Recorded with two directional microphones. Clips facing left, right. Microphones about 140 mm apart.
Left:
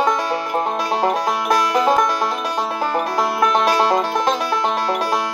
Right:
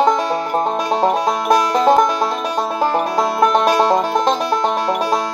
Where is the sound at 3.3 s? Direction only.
25° right (ahead or behind).